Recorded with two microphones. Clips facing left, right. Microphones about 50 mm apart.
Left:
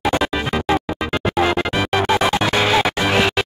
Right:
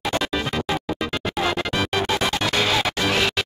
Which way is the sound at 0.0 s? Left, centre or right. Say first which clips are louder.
Left 5 dB; centre.